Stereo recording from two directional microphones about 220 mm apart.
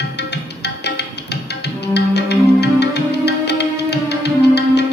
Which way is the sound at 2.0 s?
50° left (ahead or behind).